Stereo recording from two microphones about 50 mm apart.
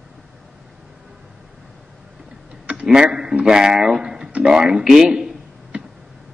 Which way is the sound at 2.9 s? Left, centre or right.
Centre.